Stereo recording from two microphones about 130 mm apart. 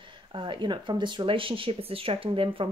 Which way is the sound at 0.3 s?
40° right (ahead or behind).